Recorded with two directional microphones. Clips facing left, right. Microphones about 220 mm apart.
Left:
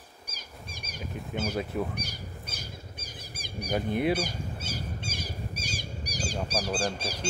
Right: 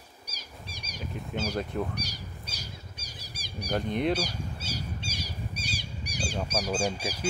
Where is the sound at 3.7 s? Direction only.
5° left (ahead or behind).